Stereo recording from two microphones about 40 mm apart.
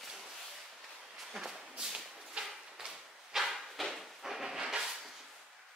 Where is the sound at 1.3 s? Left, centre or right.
Centre.